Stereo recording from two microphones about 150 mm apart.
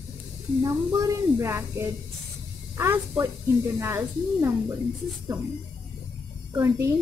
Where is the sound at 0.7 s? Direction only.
20° right (ahead or behind).